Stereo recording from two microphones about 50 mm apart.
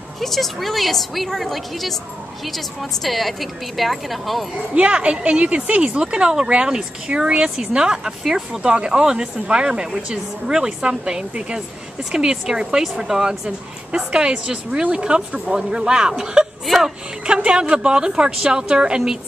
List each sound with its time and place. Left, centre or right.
0.2 s a woman's voice: centre
4.7 s speech: right
8.2 s a woman's voice: centre
8.6 s speech: centre
16.6 s a woman's voice: centre
17.3 s speech: centre